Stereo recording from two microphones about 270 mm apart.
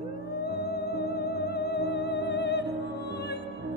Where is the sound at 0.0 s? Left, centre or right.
Left.